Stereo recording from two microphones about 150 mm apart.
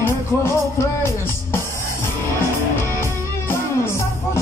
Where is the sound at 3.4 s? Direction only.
15° left (ahead or behind).